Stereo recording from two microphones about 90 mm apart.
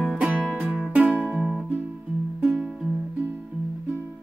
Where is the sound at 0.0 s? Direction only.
10° right (ahead or behind).